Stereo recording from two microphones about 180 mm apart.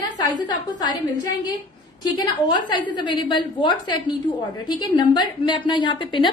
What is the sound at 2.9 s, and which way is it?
A woman's voice, 25° left (ahead or behind).